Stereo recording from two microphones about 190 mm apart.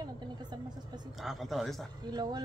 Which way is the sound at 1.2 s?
Centre (ahead or behind).